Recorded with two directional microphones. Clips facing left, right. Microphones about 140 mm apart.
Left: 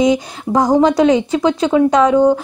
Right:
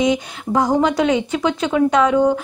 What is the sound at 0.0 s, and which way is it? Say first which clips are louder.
Speech: left 4 dB; 35° left (ahead or behind).